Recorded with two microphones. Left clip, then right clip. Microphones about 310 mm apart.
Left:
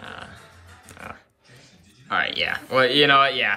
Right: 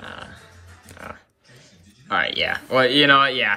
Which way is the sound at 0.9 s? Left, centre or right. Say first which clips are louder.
Right 1 dB; centre.